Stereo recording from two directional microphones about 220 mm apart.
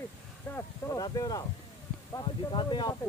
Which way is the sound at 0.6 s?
15° left (ahead or behind).